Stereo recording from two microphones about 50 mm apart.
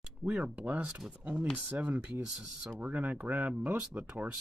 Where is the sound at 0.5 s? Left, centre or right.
Right.